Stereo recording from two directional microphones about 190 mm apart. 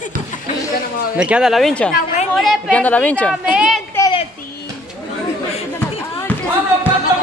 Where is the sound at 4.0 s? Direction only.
15° left (ahead or behind).